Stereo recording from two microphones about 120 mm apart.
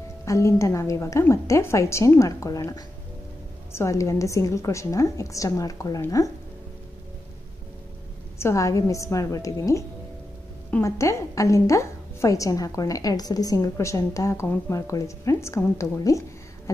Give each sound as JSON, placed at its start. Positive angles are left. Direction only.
{"t": 0.2, "sound": "a woman's voice", "side_deg": 25}
{"t": 8.4, "sound": "a woman's voice", "side_deg": 25}